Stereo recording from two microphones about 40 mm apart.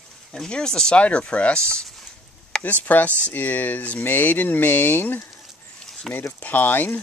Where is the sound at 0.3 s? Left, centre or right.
Centre.